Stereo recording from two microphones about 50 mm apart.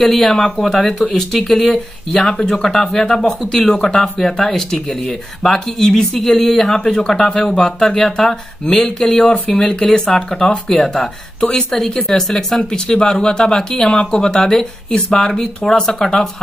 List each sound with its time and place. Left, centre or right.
0.0 s speech: centre